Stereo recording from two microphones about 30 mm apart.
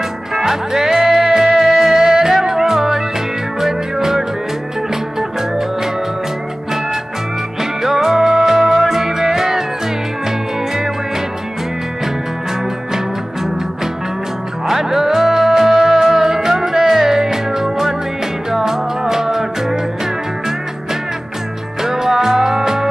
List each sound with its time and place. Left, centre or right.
0.3 s music: centre
7.8 s music: centre
14.7 s music: centre
21.8 s music: centre